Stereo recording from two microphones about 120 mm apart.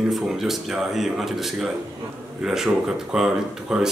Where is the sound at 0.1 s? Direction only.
Centre (ahead or behind).